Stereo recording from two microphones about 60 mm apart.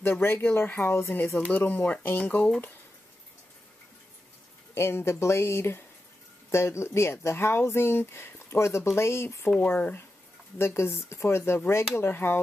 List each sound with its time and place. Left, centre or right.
0.0 s speech: left
1.6 s speech: left
4.7 s speech: left
9.6 s speech: left
10.6 s speech: left
11.1 s speech: left